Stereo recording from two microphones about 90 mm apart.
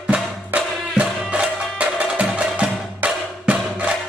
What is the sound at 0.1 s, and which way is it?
Music, 15° right (ahead or behind).